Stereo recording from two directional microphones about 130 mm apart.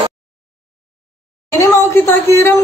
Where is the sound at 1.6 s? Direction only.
20° left (ahead or behind).